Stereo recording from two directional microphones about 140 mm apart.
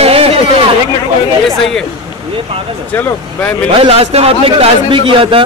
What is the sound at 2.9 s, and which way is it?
Speech, 10° left (ahead or behind).